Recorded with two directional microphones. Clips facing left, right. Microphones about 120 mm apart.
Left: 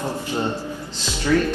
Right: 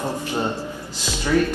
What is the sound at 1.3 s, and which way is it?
Speech, 15° right (ahead or behind).